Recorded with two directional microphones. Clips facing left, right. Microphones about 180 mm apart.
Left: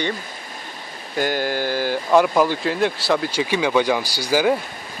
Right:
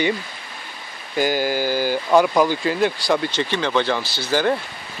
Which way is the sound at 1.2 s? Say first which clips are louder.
Right 2 dB; 5° right (ahead or behind).